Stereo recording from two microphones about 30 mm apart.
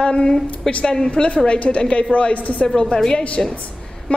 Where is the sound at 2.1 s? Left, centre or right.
Left.